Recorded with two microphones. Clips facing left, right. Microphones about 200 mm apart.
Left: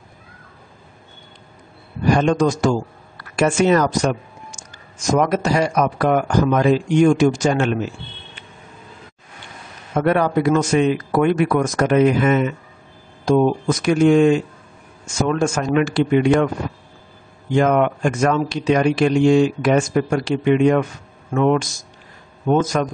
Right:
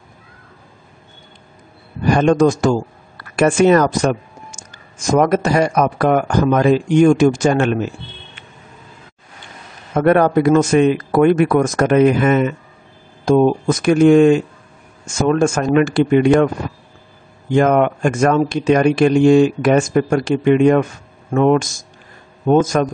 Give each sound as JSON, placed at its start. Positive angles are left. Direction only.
{"t": 2.0, "sound": "speech", "side_deg": -50}
{"t": 9.9, "sound": "speech", "side_deg": -50}
{"t": 17.6, "sound": "speech", "side_deg": -50}